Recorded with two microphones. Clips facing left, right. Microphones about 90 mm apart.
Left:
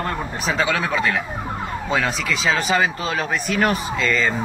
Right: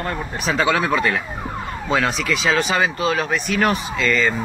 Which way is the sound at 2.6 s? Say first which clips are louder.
Right 1 dB; 30° left (ahead or behind).